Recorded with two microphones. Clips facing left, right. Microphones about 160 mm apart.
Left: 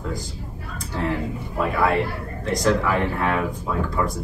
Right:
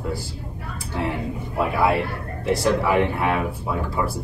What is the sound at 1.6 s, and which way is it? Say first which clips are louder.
Speech: even; 15° right (ahead or behind).